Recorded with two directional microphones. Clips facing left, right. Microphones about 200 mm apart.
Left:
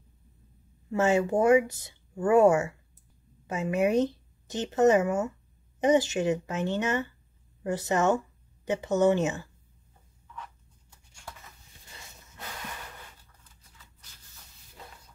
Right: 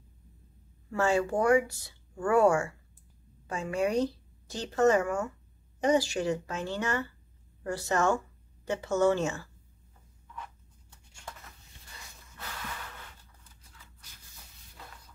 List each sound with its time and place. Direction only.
0.8 s speech: 20° left (ahead or behind)